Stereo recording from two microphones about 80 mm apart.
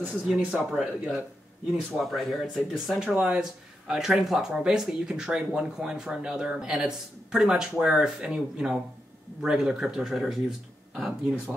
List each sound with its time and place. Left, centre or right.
0.0 s speech: centre
0.4 s speech: centre